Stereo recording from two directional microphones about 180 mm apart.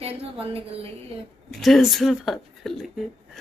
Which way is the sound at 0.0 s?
30° right (ahead or behind).